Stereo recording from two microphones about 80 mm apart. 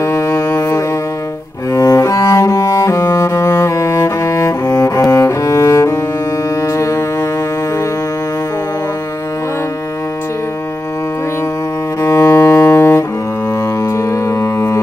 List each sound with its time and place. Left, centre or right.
0.0 s music: left
1.7 s cello: left
6.6 s music: left
12.0 s cello: left
13.8 s music: left